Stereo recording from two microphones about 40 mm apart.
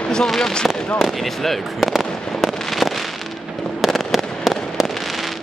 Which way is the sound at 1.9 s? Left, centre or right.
Centre.